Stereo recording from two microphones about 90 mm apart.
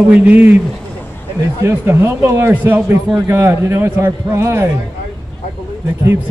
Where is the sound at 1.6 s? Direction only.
30° right (ahead or behind).